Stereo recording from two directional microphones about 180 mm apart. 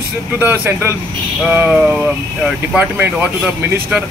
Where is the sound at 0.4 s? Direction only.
10° right (ahead or behind).